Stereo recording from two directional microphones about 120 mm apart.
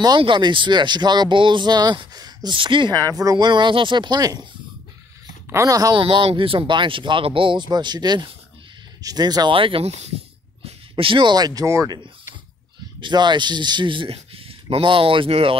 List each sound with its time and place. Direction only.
0.2 s speech: 40° right (ahead or behind)
3.0 s speech: 30° right (ahead or behind)
5.5 s speech: 25° right (ahead or behind)
5.9 s speech: 45° right (ahead or behind)
9.6 s speech: 50° right (ahead or behind)
10.6 s speech: 50° right (ahead or behind); by 12.0 s 25° right (ahead or behind)
13.0 s speech: 40° right (ahead or behind)